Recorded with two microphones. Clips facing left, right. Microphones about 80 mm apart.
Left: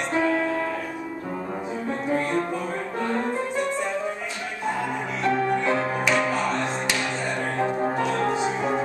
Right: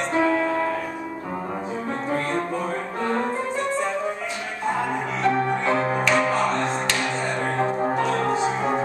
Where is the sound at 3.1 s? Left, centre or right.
Centre.